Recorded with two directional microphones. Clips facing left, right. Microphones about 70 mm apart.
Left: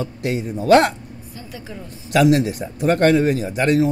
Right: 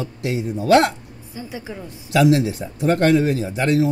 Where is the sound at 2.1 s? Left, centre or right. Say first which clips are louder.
Left 1 dB; left.